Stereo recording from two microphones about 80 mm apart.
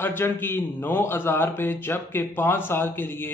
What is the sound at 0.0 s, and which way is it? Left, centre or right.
A man's voice, left.